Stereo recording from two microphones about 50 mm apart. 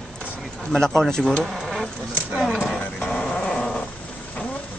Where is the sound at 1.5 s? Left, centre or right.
Centre.